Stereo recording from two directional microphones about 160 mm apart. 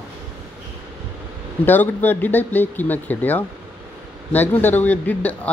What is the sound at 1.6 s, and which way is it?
Speech, 10° left (ahead or behind).